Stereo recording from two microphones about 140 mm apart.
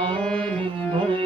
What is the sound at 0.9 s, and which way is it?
Music, 35° right (ahead or behind).